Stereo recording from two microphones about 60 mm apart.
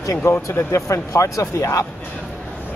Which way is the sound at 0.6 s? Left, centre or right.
Left.